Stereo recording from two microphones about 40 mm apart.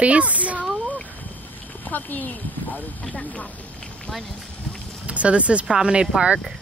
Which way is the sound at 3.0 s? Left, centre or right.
Left.